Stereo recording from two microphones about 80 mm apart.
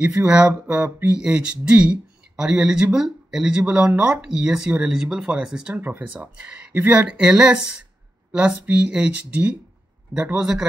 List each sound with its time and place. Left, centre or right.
0.3 s speech: centre
5.8 s speech: right